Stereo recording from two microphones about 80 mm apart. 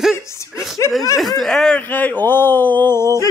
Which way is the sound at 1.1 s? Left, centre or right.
Centre.